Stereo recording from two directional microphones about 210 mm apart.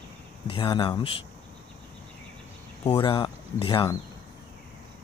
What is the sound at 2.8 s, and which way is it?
Speech, 25° left (ahead or behind).